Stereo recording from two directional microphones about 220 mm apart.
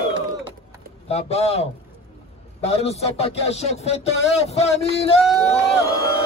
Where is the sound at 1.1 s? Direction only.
30° left (ahead or behind).